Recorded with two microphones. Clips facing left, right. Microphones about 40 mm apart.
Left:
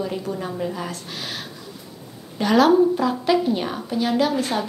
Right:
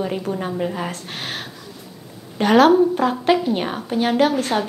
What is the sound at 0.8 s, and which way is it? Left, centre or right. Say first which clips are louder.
Speech: right 3 dB; right.